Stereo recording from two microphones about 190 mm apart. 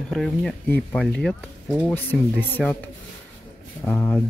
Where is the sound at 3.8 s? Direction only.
10° left (ahead or behind).